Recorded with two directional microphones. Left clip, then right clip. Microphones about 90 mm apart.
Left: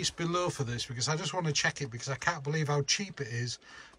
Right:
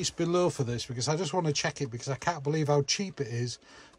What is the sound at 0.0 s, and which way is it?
Speech, 60° right (ahead or behind).